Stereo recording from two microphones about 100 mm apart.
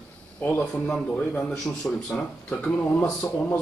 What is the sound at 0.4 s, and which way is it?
Speech, 15° left (ahead or behind).